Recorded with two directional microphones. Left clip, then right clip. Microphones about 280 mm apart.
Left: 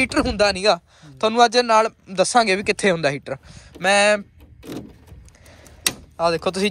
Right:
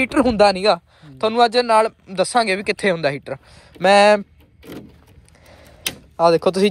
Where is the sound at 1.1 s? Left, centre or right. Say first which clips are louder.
Even; centre.